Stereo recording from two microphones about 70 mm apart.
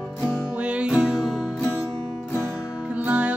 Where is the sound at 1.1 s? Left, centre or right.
Centre.